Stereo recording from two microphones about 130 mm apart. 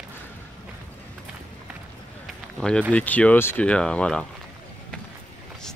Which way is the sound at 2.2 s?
5° left (ahead or behind).